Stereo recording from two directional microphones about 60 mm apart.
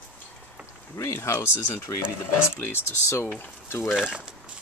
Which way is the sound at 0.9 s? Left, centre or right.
Left.